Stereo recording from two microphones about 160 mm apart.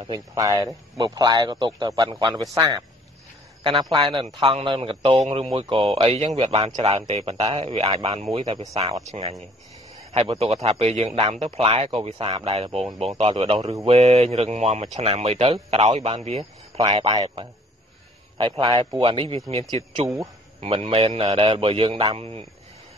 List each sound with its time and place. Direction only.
0.0 s speech: 25° right (ahead or behind)
3.9 s speech: 30° right (ahead or behind)
10.1 s speech: 35° right (ahead or behind)
16.7 s speech: 30° right (ahead or behind)
20.6 s speech: 40° right (ahead or behind)